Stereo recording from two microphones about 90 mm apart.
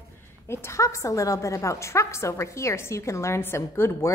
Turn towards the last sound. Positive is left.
turn(degrees=30)  # may be behind; listen again after turning